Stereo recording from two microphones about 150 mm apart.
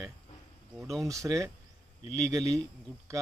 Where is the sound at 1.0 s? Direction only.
20° right (ahead or behind).